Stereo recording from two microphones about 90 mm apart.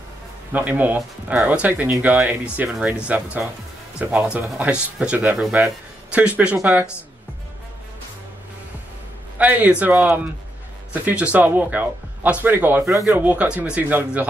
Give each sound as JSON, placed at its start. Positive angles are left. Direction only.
{"t": 0.5, "sound": "speech", "side_deg": -20}
{"t": 9.4, "sound": "speech", "side_deg": -15}